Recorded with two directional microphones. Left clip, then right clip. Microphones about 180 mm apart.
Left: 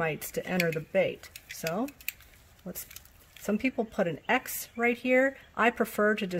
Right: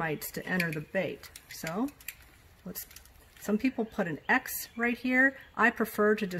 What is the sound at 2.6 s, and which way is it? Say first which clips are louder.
Speech: left 2 dB; 40° left (ahead or behind).